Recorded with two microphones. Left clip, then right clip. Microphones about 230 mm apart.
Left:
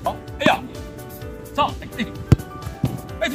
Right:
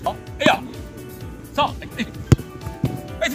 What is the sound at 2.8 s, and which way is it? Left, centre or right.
Music, centre.